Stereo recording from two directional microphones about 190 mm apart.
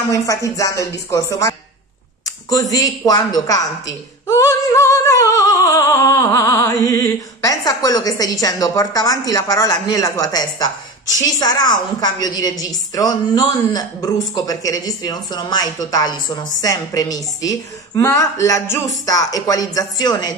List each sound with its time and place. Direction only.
0.1 s speech: 15° left (ahead or behind)
2.5 s a woman's voice: 20° left (ahead or behind)